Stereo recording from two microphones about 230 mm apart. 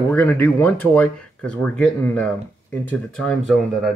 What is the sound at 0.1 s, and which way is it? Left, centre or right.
Speech, centre.